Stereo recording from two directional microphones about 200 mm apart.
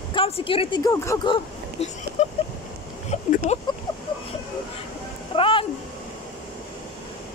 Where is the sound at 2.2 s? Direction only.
35° left (ahead or behind).